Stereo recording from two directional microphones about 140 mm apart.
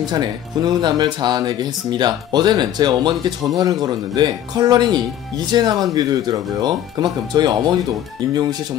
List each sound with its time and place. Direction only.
0.0 s speech: 30° right (ahead or behind)